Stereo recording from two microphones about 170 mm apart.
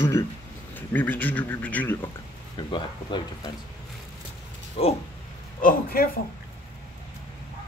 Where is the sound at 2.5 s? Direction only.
25° left (ahead or behind).